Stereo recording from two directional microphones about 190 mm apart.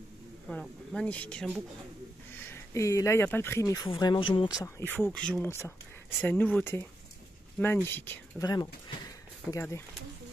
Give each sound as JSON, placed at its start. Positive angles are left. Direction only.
{"t": 0.5, "sound": "speech", "side_deg": 5}
{"t": 4.7, "sound": "speech", "side_deg": 10}